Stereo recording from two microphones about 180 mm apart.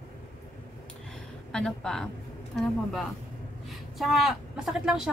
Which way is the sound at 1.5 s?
5° left (ahead or behind).